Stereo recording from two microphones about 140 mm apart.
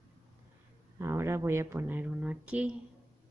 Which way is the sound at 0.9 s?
20° right (ahead or behind).